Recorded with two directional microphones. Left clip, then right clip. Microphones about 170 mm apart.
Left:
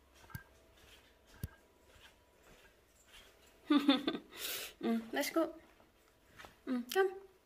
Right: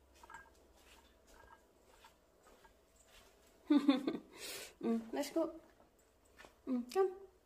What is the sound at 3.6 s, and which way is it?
Speech, 10° right (ahead or behind).